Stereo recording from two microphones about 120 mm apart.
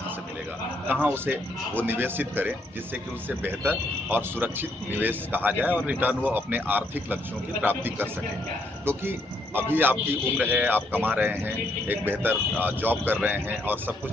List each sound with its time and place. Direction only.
1.0 s a man's voice: 15° right (ahead or behind)